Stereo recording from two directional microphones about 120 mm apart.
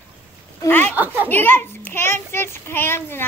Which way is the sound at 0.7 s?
15° left (ahead or behind).